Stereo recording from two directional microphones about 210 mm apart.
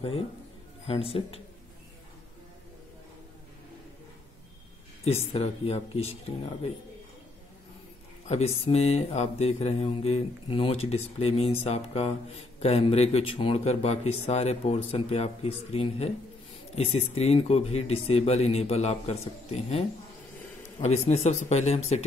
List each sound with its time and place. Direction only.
0.8 s speech: 25° left (ahead or behind)
5.0 s speech: 30° left (ahead or behind)
8.3 s speech: 30° left (ahead or behind)